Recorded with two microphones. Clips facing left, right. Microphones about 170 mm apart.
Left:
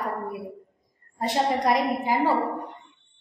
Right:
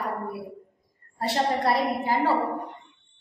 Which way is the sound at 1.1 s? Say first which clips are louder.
Left 1 dB; 15° left (ahead or behind).